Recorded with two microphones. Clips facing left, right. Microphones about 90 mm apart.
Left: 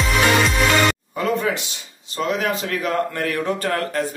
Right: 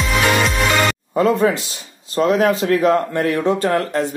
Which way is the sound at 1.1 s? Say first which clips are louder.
Right 6 dB; 35° right (ahead or behind).